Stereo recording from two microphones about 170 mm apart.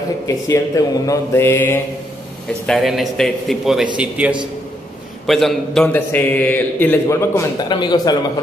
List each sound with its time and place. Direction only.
0.5 s a man's voice: 20° left (ahead or behind)
2.6 s a man's voice: centre (ahead or behind); by 8.2 s 25° left (ahead or behind)